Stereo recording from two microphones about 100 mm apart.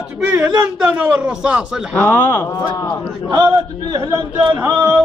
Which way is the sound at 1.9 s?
20° left (ahead or behind).